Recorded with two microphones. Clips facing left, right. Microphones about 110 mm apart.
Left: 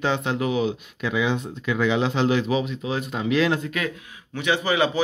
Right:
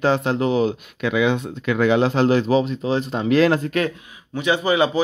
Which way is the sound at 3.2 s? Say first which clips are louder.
Right 5 dB; 45° right (ahead or behind).